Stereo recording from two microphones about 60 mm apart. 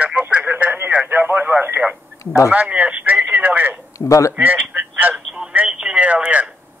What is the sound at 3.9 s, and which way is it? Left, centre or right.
Speech, left.